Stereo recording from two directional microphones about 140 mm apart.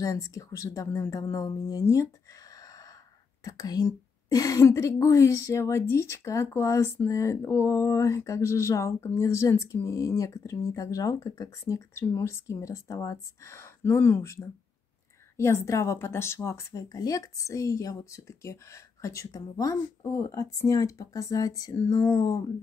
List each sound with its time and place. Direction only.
0.0 s a woman's voice: 25° left (ahead or behind)
3.4 s a woman's voice: 25° left (ahead or behind)